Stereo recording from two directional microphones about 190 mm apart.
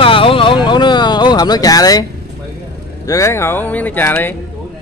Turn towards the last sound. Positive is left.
turn(degrees=10)  # may be behind; listen again after turning